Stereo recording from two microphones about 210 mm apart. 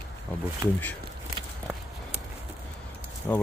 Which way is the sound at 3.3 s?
10° left (ahead or behind).